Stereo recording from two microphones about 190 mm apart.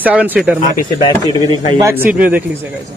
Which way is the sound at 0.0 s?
10° right (ahead or behind).